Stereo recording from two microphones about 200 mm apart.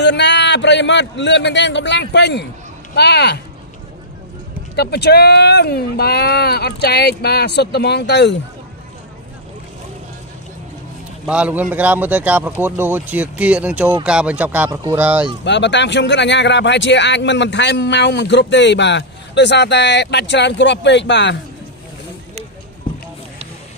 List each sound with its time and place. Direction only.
0.0 s speech: 60° left (ahead or behind)
4.7 s speech: 55° left (ahead or behind)
11.2 s speech: 5° right (ahead or behind)
14.7 s speech: 20° right (ahead or behind)
15.4 s speech: 60° left (ahead or behind)